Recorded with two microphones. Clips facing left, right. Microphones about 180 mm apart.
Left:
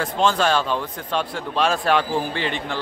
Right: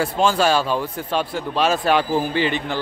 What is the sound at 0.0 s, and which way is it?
A man's voice, 5° right (ahead or behind).